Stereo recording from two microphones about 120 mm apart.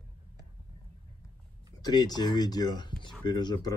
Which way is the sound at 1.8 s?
35° left (ahead or behind).